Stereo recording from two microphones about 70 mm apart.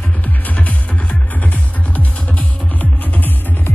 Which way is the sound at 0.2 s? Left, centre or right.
Left.